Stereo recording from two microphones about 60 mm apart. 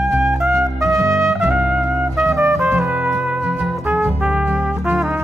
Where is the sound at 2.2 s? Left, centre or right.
Right.